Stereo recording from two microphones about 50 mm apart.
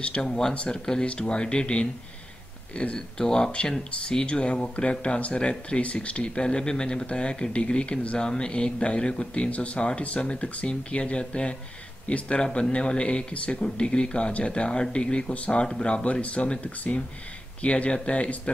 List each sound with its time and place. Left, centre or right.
0.0 s speech: left
0.3 s speech: centre